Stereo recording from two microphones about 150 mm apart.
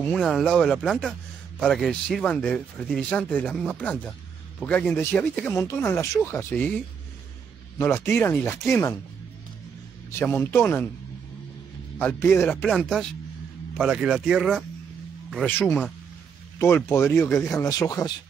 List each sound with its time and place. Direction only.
0.0 s speech: centre (ahead or behind)
7.8 s speech: 15° left (ahead or behind)
8.7 s speech: 5° left (ahead or behind)
10.4 s speech: 15° left (ahead or behind)
12.0 s speech: 15° left (ahead or behind); by 14.6 s 5° right (ahead or behind)
15.4 s speech: 10° left (ahead or behind); by 18.1 s 25° left (ahead or behind)